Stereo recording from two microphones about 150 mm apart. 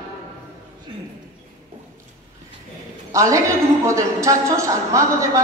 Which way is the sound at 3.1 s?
20° right (ahead or behind).